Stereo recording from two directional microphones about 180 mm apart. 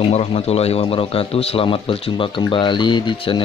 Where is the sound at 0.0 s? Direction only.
35° left (ahead or behind).